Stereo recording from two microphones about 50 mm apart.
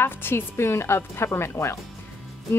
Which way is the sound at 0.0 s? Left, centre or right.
Left.